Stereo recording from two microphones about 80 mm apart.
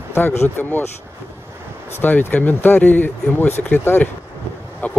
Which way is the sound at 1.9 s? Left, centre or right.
Left.